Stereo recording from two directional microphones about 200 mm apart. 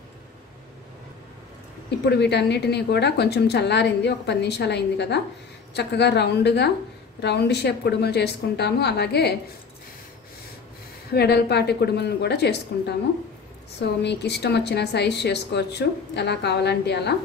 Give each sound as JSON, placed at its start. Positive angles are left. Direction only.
{"t": 2.0, "sound": "a woman's voice", "side_deg": 55}
{"t": 11.1, "sound": "a woman's voice", "side_deg": 55}
{"t": 14.0, "sound": "a woman's voice", "side_deg": 55}